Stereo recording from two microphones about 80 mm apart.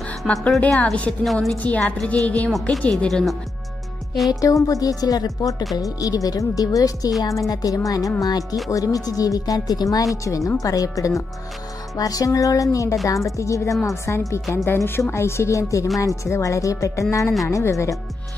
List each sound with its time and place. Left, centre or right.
0.2 s speech: centre
0.6 s a woman's voice: centre
1.2 s a woman's voice: centre
1.6 s a woman's voice: centre
3.1 s a woman's voice: centre
4.3 s speech: left